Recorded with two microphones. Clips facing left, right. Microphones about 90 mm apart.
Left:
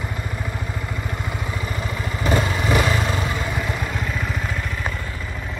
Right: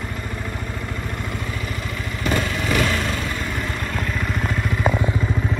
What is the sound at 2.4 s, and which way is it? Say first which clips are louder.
Vehicle: left 2 dB; 30° left (ahead or behind).